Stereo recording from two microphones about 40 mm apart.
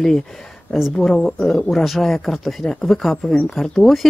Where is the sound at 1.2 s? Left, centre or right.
Centre.